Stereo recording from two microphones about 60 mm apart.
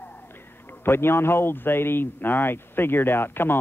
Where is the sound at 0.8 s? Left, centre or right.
Left.